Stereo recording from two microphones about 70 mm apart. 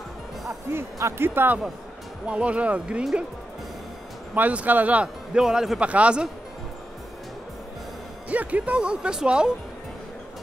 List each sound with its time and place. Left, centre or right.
0.5 s speech: right
2.2 s speech: centre
4.4 s speech: right; by 5.8 s centre
5.8 s speech: centre
8.3 s speech: right